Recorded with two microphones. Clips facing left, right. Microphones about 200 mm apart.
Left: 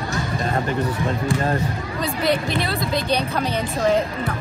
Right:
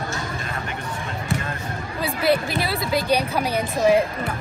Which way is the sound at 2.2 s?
5° right (ahead or behind).